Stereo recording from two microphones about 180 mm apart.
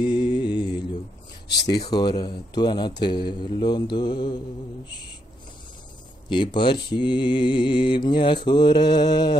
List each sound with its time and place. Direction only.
0.0 s mantra: 25° left (ahead or behind)
1.5 s speech: 70° left (ahead or behind)
1.9 s mantra: 25° left (ahead or behind)
6.2 s mantra: 25° left (ahead or behind)